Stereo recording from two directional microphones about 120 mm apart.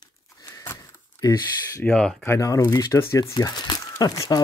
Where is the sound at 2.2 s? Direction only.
25° left (ahead or behind).